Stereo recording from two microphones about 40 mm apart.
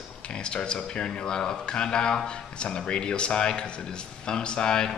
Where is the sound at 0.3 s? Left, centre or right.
Left.